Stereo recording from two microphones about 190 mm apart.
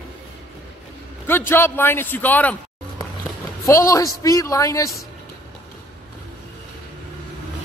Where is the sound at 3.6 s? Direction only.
15° left (ahead or behind).